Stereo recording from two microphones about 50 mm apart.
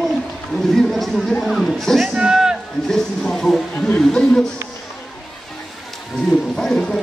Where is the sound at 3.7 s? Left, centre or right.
Centre.